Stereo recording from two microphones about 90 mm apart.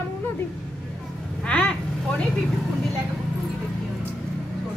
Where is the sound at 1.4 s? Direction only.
15° left (ahead or behind).